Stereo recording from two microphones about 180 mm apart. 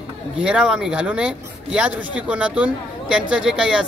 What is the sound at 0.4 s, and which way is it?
Speech, 5° right (ahead or behind).